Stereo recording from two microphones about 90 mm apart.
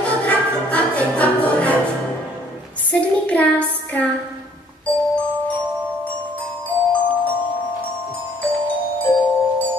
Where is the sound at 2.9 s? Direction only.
15° left (ahead or behind).